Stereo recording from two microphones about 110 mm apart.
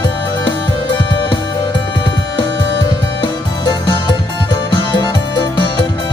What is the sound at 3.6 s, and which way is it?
Music, 40° left (ahead or behind).